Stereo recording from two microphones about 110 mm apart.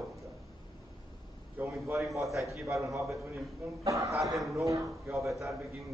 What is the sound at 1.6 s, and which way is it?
Speech, 25° right (ahead or behind).